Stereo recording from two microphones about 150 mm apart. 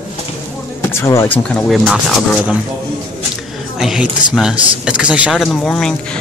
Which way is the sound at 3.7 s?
5° right (ahead or behind).